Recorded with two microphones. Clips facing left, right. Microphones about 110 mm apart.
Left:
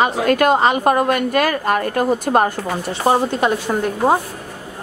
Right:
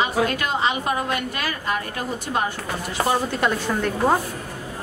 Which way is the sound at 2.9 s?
30° left (ahead or behind).